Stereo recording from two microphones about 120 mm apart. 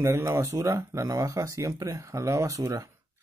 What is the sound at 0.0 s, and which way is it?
Speech, 25° right (ahead or behind).